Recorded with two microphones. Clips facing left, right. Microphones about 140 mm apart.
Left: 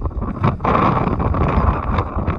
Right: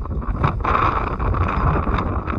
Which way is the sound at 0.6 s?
65° left (ahead or behind).